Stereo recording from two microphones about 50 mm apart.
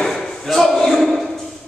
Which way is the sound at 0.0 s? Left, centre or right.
Centre.